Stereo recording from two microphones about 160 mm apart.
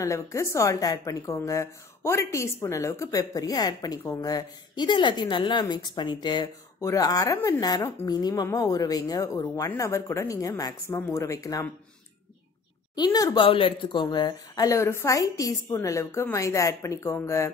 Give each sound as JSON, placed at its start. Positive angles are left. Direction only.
{"t": 0.0, "sound": "speech", "side_deg": 20}
{"t": 7.3, "sound": "speech", "side_deg": 10}
{"t": 7.6, "sound": "speech", "side_deg": 25}
{"t": 12.9, "sound": "speech", "side_deg": 25}